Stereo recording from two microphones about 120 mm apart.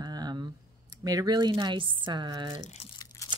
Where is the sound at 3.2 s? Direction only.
25° left (ahead or behind).